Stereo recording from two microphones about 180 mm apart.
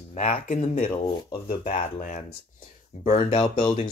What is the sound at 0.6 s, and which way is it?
Speech, 35° left (ahead or behind).